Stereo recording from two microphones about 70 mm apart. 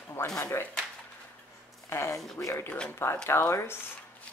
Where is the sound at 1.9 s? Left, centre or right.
Left.